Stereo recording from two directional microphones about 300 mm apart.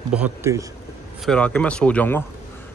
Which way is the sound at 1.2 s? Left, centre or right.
Centre.